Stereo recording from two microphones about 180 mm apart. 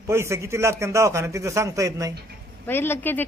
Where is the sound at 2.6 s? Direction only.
10° left (ahead or behind).